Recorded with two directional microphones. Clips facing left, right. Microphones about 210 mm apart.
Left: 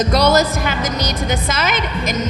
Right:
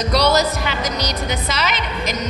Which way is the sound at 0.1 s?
50° left (ahead or behind).